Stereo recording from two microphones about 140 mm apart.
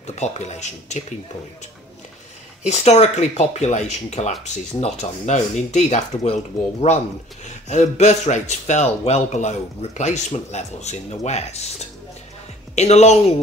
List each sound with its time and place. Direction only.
0.0 s speech: 55° left (ahead or behind)
2.6 s speech: 55° left (ahead or behind)
7.4 s speech: 60° left (ahead or behind)
12.7 s a woman's voice: 55° left (ahead or behind)